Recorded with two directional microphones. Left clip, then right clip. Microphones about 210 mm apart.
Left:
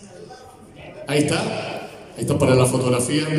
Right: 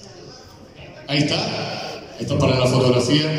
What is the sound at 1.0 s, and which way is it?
Speech, 55° left (ahead or behind).